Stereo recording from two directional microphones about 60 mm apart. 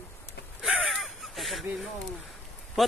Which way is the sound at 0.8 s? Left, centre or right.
Centre.